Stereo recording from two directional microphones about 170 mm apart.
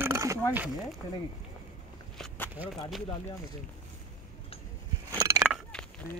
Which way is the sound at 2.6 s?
Centre (ahead or behind).